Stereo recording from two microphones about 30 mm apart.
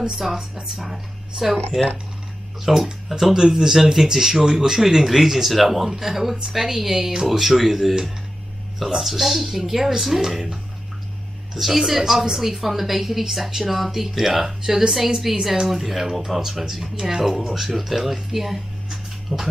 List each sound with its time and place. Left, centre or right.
0.2 s speech: centre
2.8 s speech: centre
3.3 s speech: centre
11.6 s speech: centre